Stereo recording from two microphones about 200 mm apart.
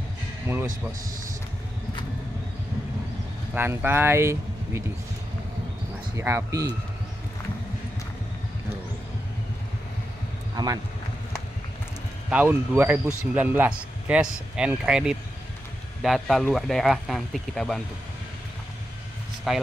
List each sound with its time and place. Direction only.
3.5 s speech: 10° right (ahead or behind)
6.1 s speech: 15° right (ahead or behind)
10.5 s speech: 20° right (ahead or behind)
12.3 s speech: 10° right (ahead or behind)
19.5 s speech: centre (ahead or behind)